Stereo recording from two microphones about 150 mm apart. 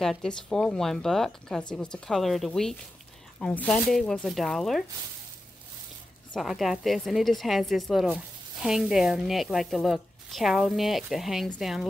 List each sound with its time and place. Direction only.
0.0 s a woman's voice: centre (ahead or behind)
6.3 s speech: centre (ahead or behind)